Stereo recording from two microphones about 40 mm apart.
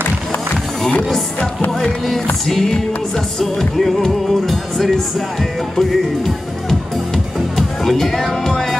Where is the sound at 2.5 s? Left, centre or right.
Centre.